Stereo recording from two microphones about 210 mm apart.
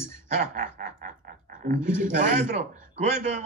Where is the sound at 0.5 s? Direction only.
35° right (ahead or behind).